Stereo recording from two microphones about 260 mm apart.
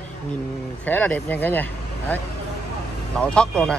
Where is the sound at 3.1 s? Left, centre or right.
Centre.